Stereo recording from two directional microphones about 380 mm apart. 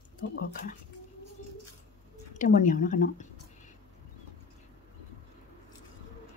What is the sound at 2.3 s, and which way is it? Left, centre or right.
Speech, left.